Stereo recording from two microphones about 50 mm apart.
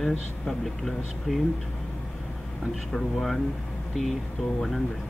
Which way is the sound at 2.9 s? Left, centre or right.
Centre.